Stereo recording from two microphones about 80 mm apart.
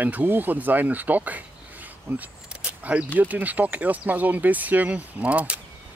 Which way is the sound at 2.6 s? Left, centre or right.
Centre.